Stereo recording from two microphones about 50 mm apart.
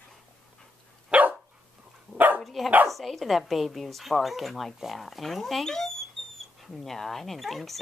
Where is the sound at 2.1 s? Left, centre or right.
Right.